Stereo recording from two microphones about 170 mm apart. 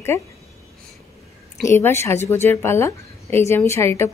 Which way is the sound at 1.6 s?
15° left (ahead or behind).